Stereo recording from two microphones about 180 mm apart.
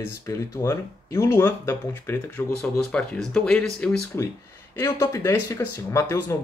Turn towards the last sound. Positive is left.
turn(degrees=15)  # may be behind; listen again after turning